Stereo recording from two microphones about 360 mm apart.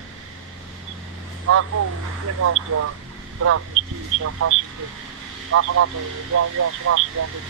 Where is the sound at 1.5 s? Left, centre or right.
Right.